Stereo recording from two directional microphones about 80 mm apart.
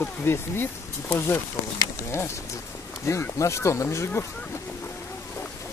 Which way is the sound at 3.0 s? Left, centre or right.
Left.